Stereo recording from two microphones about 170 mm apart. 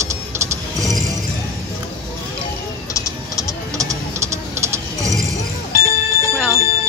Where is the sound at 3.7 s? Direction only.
20° right (ahead or behind).